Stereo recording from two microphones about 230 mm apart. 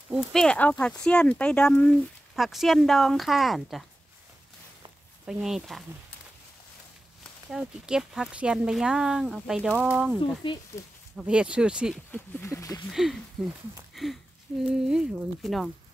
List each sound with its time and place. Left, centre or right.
0.1 s speech: centre
5.2 s speech: centre
7.5 s speech: centre
12.1 s a sound: centre
12.9 s speech: centre